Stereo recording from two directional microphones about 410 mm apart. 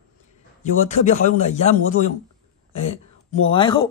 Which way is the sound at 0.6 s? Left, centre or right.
Centre.